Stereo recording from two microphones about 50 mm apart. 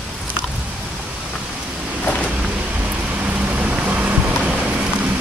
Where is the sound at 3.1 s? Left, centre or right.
Right.